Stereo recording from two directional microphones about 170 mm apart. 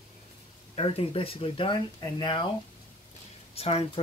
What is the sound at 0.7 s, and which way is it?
Speech, 35° left (ahead or behind).